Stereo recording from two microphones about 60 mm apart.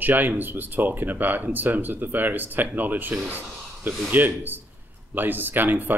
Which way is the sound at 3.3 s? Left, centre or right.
Right.